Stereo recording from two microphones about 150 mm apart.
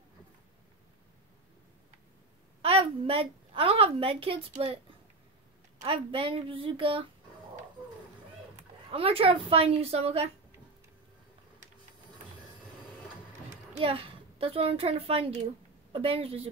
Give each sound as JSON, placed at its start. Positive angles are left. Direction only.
{"t": 2.6, "sound": "a woman's voice", "side_deg": -40}
{"t": 5.9, "sound": "a woman's voice", "side_deg": -35}
{"t": 8.5, "sound": "speech", "side_deg": -40}
{"t": 13.5, "sound": "a child's voice", "side_deg": -40}